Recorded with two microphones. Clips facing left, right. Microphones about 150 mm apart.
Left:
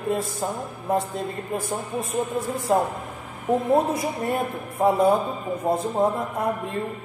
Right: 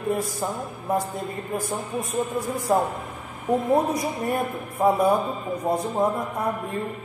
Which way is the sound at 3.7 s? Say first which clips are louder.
Left 1 dB; 25° left (ahead or behind).